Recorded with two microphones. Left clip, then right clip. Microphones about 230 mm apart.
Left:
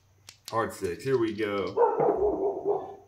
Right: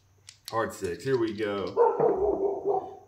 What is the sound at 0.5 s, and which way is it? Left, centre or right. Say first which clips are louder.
Speech: even; centre.